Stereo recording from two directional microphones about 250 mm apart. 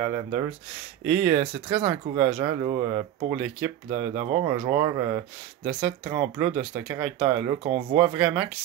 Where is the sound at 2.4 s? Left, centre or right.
Centre.